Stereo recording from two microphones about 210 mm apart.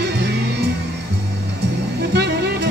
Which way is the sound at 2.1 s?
50° right (ahead or behind).